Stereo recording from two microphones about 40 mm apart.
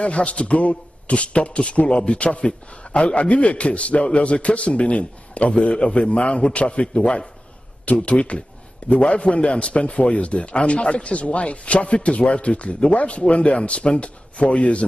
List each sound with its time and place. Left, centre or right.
0.0 s a man's voice: left
7.8 s a man's voice: left